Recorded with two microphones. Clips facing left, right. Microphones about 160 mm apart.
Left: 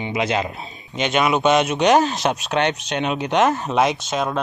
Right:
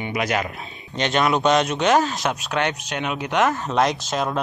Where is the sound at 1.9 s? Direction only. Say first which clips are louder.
Left 4 dB; 20° left (ahead or behind).